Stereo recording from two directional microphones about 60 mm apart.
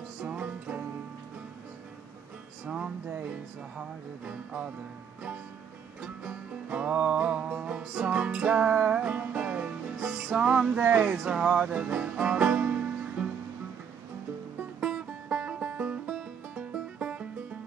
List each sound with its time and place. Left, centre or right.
0.2 s music: right
2.6 s music: centre
5.9 s music: centre
14.8 s music: centre